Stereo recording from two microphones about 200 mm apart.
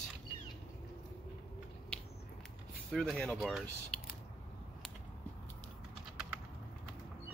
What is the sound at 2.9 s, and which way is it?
Speech, 5° left (ahead or behind).